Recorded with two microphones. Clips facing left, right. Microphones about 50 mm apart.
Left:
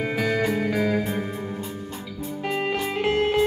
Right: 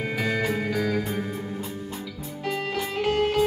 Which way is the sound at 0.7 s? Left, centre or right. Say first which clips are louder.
Left 3 dB; centre.